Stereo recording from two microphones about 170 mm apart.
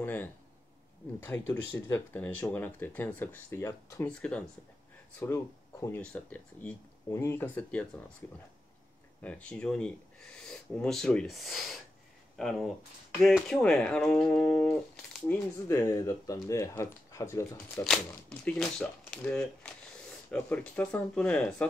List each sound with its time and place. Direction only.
0.0 s speech: 10° left (ahead or behind)
9.2 s speech: 5° left (ahead or behind)
17.8 s speech: centre (ahead or behind)